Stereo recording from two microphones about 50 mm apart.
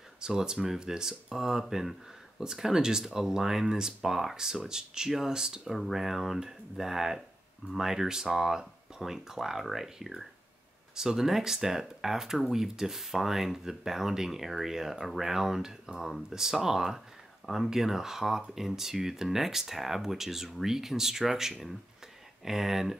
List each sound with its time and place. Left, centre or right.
0.2 s speech: centre